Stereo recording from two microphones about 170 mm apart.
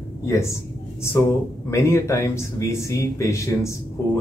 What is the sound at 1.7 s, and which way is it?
Speech, 15° left (ahead or behind).